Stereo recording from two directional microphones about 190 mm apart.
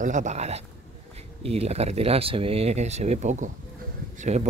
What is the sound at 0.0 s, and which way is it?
Speech, 40° right (ahead or behind).